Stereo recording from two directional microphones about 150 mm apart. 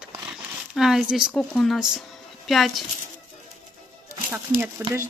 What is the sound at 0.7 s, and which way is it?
Speech, centre (ahead or behind).